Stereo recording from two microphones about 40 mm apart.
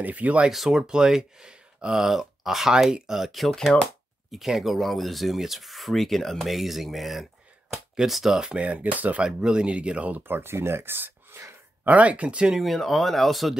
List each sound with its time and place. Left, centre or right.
0.0 s speech: right
0.5 s speech: centre
3.8 s a sound: centre
4.6 s speech: centre
7.7 s a sound: centre
8.1 s speech: centre
8.5 s speech: right
9.2 s speech: right
10.2 s speech: right
12.0 s speech: right
12.5 s speech: centre